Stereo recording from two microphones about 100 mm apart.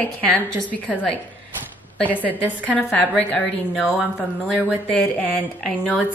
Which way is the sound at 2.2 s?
15° left (ahead or behind).